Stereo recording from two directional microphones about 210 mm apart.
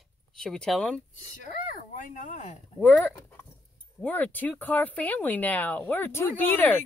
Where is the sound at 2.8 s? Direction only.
5° left (ahead or behind).